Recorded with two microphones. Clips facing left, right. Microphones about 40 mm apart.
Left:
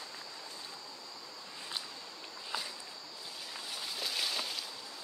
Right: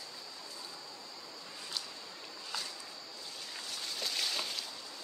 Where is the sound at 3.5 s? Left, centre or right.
Centre.